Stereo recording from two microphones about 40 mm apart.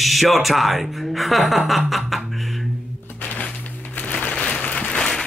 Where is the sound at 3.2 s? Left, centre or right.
Left.